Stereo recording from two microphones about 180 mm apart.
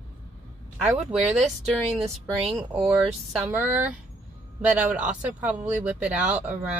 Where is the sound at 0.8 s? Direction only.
5° right (ahead or behind).